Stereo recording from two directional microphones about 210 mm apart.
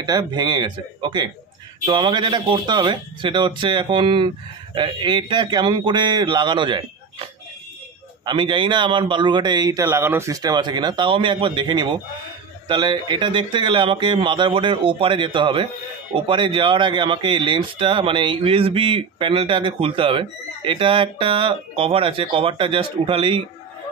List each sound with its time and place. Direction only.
0.0 s speech: 20° right (ahead or behind)
8.3 s speech: 25° right (ahead or behind)